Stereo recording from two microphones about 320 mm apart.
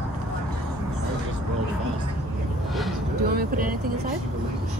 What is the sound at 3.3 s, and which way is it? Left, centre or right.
Vehicle, right.